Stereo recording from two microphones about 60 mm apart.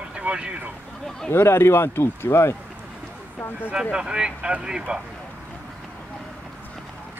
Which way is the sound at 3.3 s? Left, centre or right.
Left.